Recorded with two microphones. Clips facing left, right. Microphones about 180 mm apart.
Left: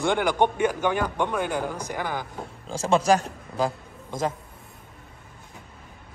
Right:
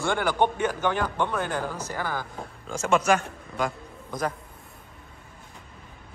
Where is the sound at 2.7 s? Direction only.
30° left (ahead or behind).